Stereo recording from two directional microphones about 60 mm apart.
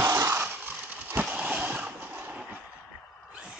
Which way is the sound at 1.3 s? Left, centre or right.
Right.